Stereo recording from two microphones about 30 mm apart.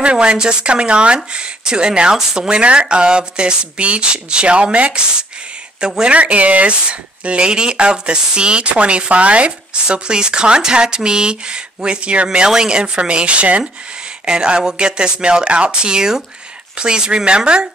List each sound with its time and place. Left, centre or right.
0.0 s speech: right
2.6 s speech: right
5.8 s speech: right
6.1 s speech: right
9.8 s speech: right
12.4 s speech: right
14.2 s speech: right